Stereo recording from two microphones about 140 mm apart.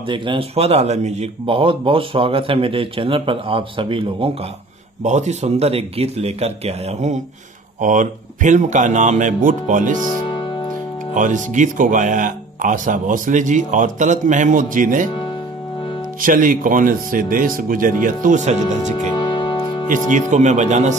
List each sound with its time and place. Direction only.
0.1 s speech: 35° right (ahead or behind)
5.0 s speech: 55° right (ahead or behind)
7.8 s speech: 65° right (ahead or behind)
11.1 s speech: 65° right (ahead or behind)
16.2 s speech: 75° right (ahead or behind); by 18.6 s 55° right (ahead or behind)
19.1 s music: 35° left (ahead or behind)
19.9 s speech: 65° right (ahead or behind)